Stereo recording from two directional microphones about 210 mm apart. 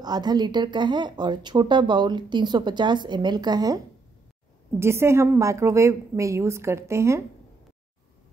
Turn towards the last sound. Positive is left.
turn(degrees=-15)  # may be behind; listen again after turning